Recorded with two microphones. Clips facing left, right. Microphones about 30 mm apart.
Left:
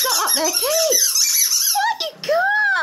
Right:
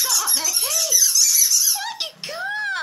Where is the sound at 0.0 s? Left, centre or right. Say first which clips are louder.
Left 4 dB; left.